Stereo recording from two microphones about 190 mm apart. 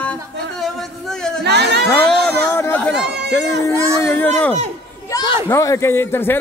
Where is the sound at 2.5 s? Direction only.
10° left (ahead or behind).